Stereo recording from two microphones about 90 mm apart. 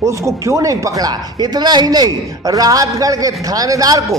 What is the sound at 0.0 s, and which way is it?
A man's voice, 35° right (ahead or behind).